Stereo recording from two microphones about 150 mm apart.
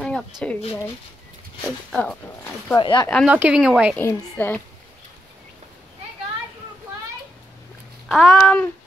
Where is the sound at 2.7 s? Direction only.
30° left (ahead or behind).